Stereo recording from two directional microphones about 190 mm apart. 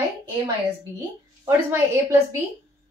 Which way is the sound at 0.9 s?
15° right (ahead or behind).